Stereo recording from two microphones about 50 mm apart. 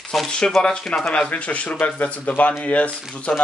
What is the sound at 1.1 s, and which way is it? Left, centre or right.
Speech, left.